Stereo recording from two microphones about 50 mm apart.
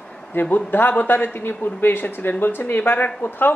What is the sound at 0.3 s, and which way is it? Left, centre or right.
A man's voice, left.